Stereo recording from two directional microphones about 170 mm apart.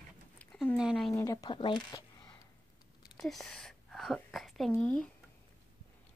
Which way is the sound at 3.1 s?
Centre (ahead or behind).